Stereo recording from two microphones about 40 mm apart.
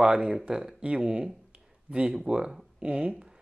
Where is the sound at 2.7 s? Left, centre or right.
Right.